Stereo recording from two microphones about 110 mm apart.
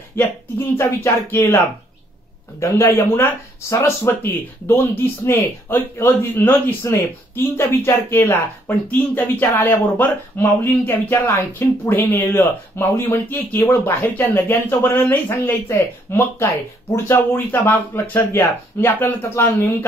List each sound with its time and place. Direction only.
0.7 s speech: 20° left (ahead or behind)
2.6 s speech: 25° left (ahead or behind)